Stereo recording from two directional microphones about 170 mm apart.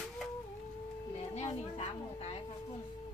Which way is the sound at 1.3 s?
40° left (ahead or behind).